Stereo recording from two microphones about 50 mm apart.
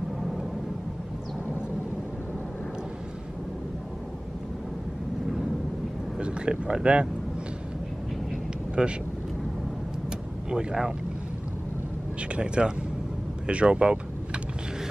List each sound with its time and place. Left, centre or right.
6.1 s speech: centre
8.8 s speech: centre
10.5 s speech: centre
12.2 s speech: right